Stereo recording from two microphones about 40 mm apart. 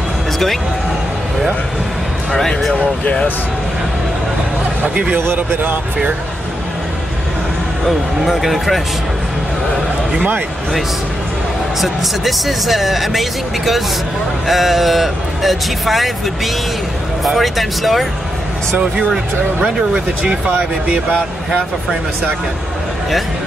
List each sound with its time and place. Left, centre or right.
2.3 s speech: centre
7.8 s speech: centre
11.8 s speech: centre
17.2 s speech: centre
20.2 s speech: right